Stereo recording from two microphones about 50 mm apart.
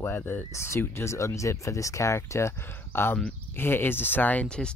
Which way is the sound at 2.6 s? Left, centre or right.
Left.